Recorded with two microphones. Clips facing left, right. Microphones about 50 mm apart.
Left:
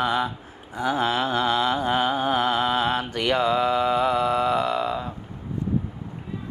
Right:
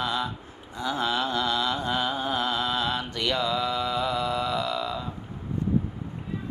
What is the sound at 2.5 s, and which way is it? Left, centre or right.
Mantra, left.